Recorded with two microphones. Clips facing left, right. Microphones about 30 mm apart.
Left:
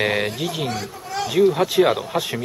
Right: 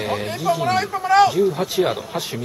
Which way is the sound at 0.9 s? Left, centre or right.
Right.